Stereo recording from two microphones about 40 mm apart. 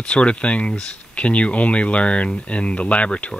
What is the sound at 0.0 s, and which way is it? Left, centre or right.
Speech, left.